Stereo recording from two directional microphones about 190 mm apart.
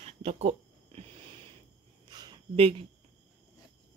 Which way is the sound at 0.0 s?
35° right (ahead or behind).